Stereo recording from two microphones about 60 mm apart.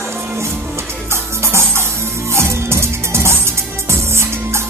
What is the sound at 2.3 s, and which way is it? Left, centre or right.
Music, right.